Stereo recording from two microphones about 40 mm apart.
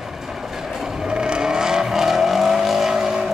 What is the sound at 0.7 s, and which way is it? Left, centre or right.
Vehicle, centre.